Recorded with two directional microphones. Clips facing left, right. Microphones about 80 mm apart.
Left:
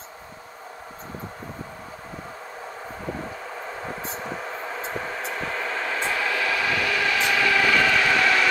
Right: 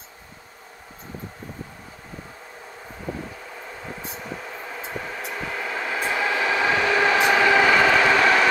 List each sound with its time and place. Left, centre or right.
5.3 s vehicle: centre; by 8.5 s right